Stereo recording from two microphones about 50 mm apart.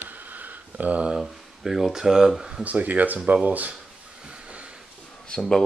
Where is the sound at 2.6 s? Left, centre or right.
Right.